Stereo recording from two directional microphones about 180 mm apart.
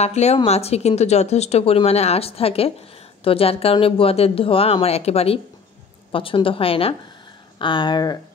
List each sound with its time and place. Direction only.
0.0 s a woman's voice: 35° left (ahead or behind)